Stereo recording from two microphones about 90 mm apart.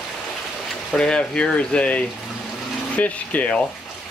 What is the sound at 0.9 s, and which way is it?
Speech, 10° left (ahead or behind).